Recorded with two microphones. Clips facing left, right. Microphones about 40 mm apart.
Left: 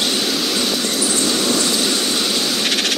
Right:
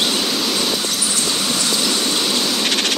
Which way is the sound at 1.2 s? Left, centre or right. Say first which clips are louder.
Left 3 dB; centre.